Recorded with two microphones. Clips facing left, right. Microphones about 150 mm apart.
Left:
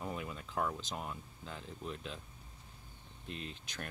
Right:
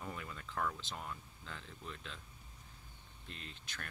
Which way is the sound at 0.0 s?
20° left (ahead or behind).